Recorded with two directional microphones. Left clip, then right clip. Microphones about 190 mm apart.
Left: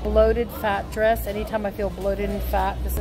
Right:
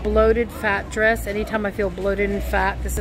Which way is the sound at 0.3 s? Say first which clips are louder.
Right 3 dB; 20° right (ahead or behind).